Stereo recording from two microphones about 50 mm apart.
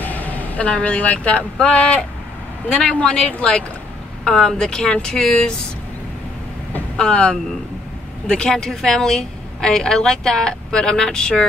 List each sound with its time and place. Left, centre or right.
0.0 s speech: left
4.2 s a woman's voice: centre
7.0 s speech: centre
8.5 s a woman's voice: centre